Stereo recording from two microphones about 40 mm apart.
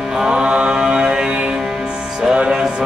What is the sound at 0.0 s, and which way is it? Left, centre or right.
Music, centre.